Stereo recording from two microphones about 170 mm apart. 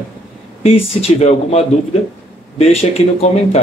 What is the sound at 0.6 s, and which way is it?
Speech, 35° left (ahead or behind).